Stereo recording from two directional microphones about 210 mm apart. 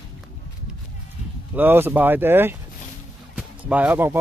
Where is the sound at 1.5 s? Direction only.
10° right (ahead or behind).